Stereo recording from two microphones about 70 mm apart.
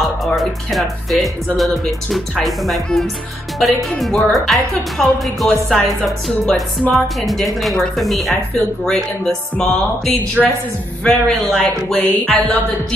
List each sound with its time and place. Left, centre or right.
0.0 s speech: centre
10.4 s a woman's voice: centre
11.1 s speech: centre
11.9 s music: centre